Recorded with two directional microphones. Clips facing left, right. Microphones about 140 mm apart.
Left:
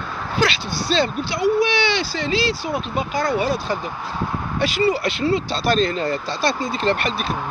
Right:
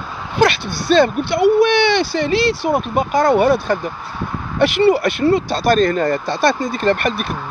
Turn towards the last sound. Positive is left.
turn(degrees=-55)  # may be behind; listen again after turning